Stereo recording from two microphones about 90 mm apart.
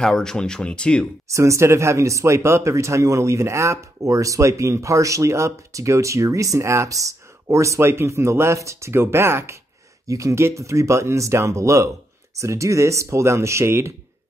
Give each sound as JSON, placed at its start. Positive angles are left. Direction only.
{"t": 0.0, "sound": "speech", "side_deg": 5}
{"t": 1.3, "sound": "speech", "side_deg": -35}